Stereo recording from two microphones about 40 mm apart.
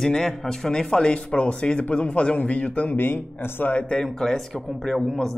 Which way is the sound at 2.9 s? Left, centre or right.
Left.